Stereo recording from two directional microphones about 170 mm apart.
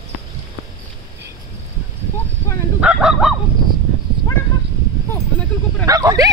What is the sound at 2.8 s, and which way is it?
Fowl, 5° right (ahead or behind).